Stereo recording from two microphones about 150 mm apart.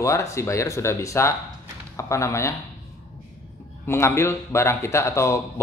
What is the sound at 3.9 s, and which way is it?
A man's voice, 15° left (ahead or behind).